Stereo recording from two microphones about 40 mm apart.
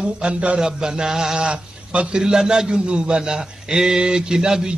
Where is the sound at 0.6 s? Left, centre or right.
Centre.